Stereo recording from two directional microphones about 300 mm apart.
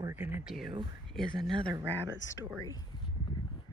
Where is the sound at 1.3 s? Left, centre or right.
Centre.